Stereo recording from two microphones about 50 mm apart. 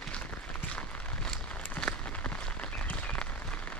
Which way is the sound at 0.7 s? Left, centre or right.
Centre.